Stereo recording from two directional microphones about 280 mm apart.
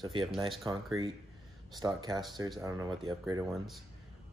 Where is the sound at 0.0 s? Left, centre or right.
Centre.